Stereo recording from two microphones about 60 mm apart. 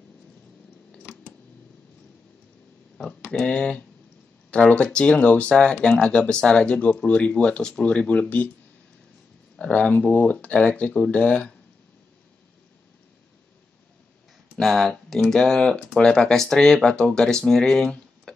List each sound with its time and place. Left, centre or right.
3.0 s speech: centre
9.6 s speech: left
14.6 s speech: centre